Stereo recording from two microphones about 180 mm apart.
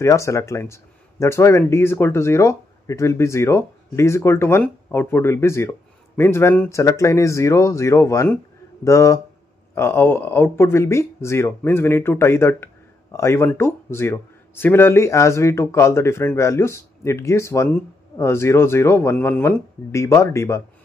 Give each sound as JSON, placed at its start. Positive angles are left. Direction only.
{"t": 0.0, "sound": "speech", "side_deg": 15}